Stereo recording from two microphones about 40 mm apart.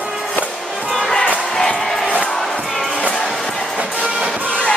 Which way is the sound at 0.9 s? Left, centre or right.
Centre.